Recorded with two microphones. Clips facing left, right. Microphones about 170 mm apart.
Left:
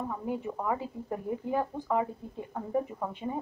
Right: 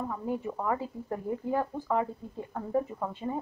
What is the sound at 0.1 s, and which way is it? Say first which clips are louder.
A woman's voice: right 1 dB; 5° left (ahead or behind).